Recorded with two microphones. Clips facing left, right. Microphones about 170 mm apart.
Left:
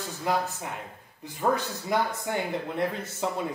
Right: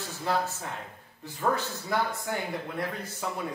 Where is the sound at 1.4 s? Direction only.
15° left (ahead or behind).